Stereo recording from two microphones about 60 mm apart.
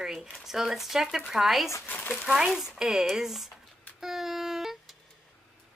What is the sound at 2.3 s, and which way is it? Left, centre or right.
A woman's voice, centre.